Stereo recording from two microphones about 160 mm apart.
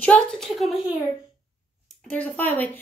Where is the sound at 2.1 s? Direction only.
10° left (ahead or behind).